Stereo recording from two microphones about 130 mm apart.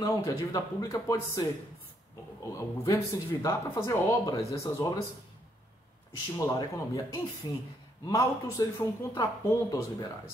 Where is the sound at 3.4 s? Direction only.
25° left (ahead or behind).